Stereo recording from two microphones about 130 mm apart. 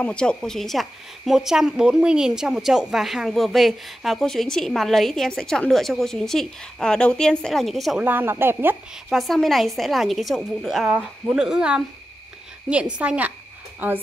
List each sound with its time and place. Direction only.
0.0 s speech: 10° left (ahead or behind)
8.0 s speech: 15° right (ahead or behind)
9.1 s speech: centre (ahead or behind)
12.9 s speech: 10° right (ahead or behind)